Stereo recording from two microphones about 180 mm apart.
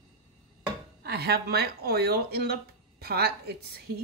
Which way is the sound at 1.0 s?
60° right (ahead or behind).